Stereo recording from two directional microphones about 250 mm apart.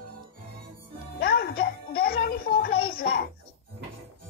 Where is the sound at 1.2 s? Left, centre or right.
Left.